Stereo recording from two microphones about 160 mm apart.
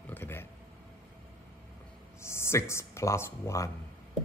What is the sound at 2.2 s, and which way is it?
Speech, 15° left (ahead or behind).